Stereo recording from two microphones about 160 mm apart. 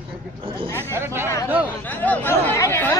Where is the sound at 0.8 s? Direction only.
15° right (ahead or behind).